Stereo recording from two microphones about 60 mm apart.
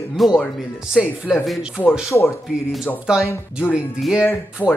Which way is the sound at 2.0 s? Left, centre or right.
Left.